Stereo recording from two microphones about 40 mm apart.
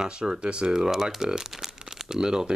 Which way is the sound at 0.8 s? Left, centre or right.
Centre.